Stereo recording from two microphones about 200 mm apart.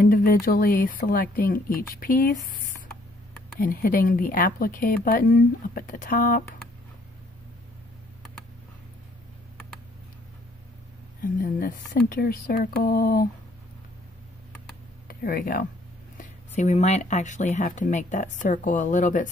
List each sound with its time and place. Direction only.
0.0 s speech: 45° left (ahead or behind)
11.4 s speech: 45° left (ahead or behind)
15.0 s speech: 45° left (ahead or behind)
16.2 s speech: 35° left (ahead or behind)